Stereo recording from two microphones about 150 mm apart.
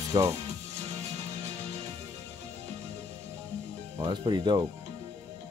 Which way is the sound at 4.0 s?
30° right (ahead or behind).